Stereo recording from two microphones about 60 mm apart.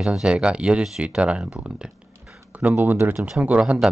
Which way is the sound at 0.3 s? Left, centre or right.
Centre.